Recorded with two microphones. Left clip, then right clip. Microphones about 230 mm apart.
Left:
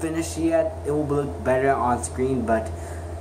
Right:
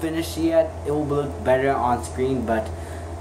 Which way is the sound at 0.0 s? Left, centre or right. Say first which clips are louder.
Right 1 dB; centre.